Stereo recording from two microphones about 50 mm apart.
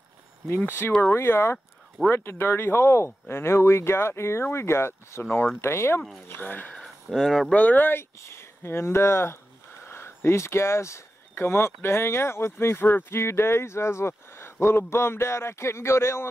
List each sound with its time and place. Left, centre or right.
0.7 s speech: left
6.4 s speech: left
7.1 s speech: centre
7.5 s speech: left
8.2 s speech: left